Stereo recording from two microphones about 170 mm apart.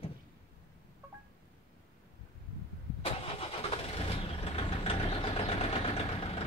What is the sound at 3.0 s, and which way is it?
Vehicle, 35° left (ahead or behind).